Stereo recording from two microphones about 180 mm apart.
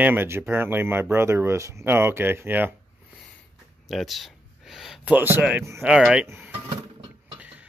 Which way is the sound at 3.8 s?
Centre (ahead or behind).